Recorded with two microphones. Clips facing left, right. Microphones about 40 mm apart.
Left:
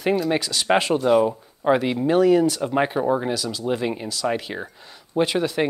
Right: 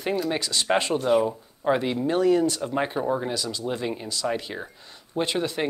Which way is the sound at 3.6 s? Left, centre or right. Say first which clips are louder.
Left 4 dB; centre.